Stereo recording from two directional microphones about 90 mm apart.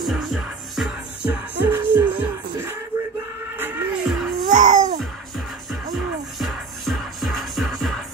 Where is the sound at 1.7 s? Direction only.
20° right (ahead or behind).